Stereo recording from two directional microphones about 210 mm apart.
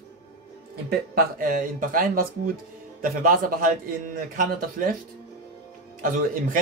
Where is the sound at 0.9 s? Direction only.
40° right (ahead or behind).